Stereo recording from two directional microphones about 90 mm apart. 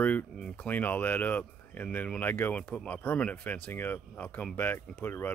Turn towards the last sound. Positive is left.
turn(degrees=25)  # may be behind; listen again after turning